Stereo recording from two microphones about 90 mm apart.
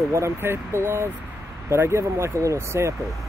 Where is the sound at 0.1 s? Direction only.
30° right (ahead or behind).